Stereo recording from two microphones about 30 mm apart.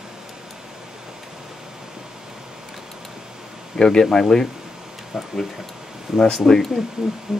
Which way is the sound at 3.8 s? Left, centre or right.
Centre.